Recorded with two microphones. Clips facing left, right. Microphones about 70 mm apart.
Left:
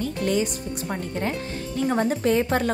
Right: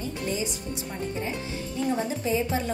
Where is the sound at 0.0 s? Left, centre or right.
Left.